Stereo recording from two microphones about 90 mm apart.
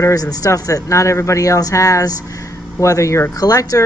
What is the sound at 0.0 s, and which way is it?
Speech, 40° left (ahead or behind).